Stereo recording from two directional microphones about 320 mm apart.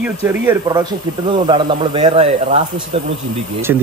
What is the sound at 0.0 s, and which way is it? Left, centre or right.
Speech, centre.